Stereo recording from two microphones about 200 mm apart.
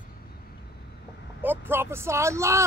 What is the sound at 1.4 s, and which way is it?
Speech, 10° right (ahead or behind).